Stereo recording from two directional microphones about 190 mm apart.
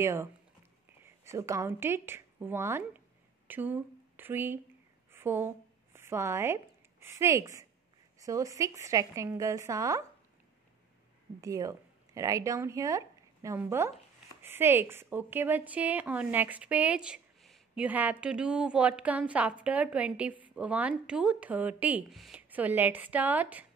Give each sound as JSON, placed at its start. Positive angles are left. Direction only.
{"t": 0.0, "sound": "a woman's voice", "side_deg": -15}
{"t": 11.4, "sound": "a woman's voice", "side_deg": -20}